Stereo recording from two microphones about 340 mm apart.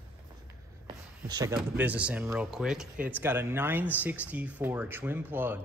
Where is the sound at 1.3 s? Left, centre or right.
Centre.